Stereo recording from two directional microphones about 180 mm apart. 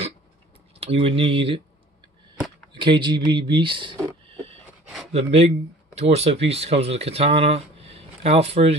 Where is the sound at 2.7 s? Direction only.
25° right (ahead or behind).